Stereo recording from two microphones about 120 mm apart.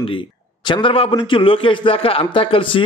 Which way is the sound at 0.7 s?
45° left (ahead or behind).